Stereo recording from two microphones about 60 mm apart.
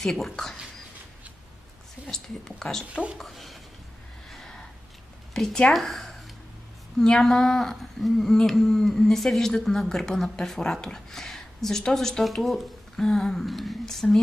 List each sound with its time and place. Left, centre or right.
0.0 s a woman's voice: centre
2.0 s a woman's voice: centre
2.9 s speech: centre
3.2 s a woman's voice: centre
4.3 s gasp: centre
5.3 s a woman's voice: centre